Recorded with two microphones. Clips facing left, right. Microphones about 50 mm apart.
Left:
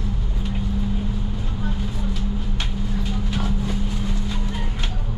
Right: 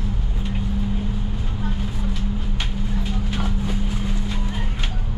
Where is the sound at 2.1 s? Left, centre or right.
Centre.